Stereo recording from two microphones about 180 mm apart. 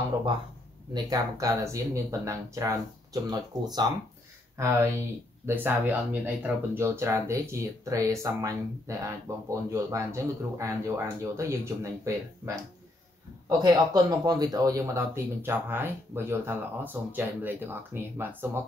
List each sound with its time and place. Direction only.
0.9 s speech: 20° right (ahead or behind)